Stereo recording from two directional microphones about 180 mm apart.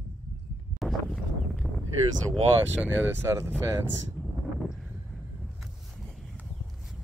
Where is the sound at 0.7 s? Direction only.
Centre (ahead or behind).